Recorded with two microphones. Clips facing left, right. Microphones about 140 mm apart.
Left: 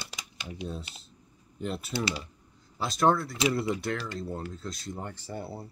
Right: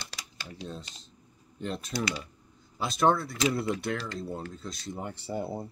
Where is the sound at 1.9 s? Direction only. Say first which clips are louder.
Even; 25° left (ahead or behind).